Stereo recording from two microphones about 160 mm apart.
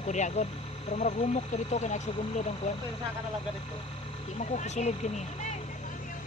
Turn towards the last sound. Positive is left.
turn(degrees=45)  # may be behind; listen again after turning